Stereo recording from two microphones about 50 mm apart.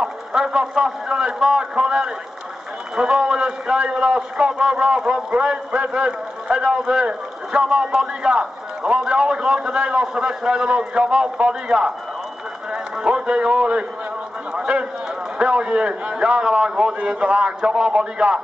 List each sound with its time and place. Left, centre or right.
0.0 s a man's voice: centre
14.6 s run: centre
15.3 s a man's voice: centre